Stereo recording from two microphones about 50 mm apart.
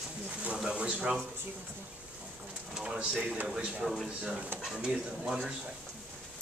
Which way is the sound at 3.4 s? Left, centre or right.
Centre.